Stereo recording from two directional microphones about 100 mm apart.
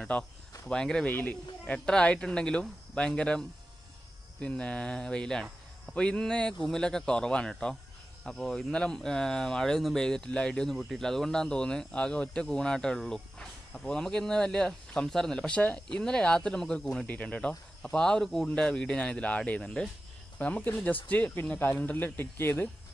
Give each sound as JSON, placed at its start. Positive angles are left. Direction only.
{"t": 0.1, "sound": "speech", "side_deg": 10}